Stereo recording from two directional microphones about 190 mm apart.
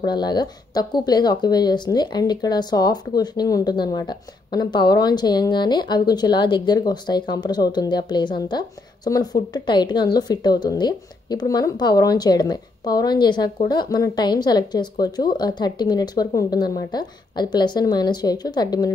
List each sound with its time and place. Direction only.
0.0 s speech: 20° left (ahead or behind)